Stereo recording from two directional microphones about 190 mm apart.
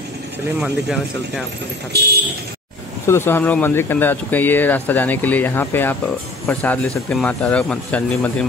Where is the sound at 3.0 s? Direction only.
10° left (ahead or behind).